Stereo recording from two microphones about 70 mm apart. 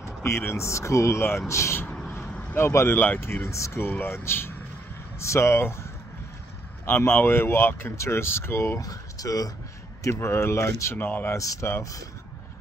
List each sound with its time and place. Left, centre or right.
0.0 s a sound: left
0.4 s speech: left
1.9 s vehicle: centre
2.5 s speech: left
3.4 s speech: left
4.0 s speech: left
6.9 s speech: left
8.8 s speech: left
10.1 s speech: left
11.0 s speech: left
11.8 s speech: left